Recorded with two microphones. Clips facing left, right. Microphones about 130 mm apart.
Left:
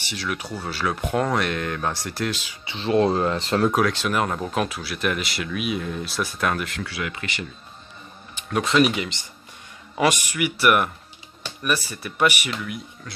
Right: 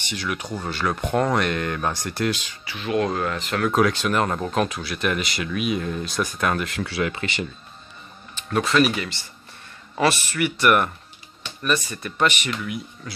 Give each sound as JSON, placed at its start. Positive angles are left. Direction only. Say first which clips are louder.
{"t": 0.0, "sound": "speech", "louder": "right 1 dB", "side_deg": 0}
{"t": 2.6, "sound": "speech", "louder": "left 4 dB", "side_deg": 30}
{"t": 3.7, "sound": "speech", "louder": "right 2 dB", "side_deg": 0}
{"t": 6.8, "sound": "speech", "louder": "right 5 dB", "side_deg": -30}
{"t": 8.4, "sound": "a sound", "louder": "right 1 dB", "side_deg": 10}
{"t": 8.6, "sound": "speech", "louder": "left 1 dB", "side_deg": 20}
{"t": 12.5, "sound": "speech", "louder": "right 2 dB", "side_deg": 0}